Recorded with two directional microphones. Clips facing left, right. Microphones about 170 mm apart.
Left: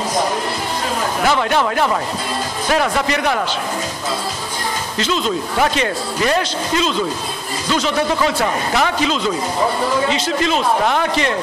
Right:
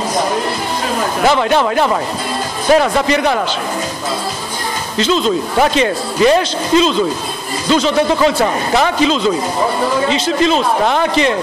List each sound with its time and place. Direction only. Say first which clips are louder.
1.2 s speech: right 4 dB; 25° right (ahead or behind)
4.9 s speech: right 6 dB; 25° right (ahead or behind)